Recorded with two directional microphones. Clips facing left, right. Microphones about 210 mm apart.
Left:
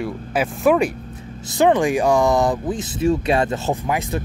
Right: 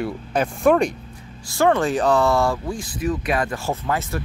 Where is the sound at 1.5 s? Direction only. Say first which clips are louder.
Left 2 dB; 15° left (ahead or behind).